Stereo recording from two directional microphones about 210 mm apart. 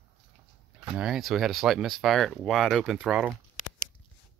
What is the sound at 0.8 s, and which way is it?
Speech, 5° right (ahead or behind).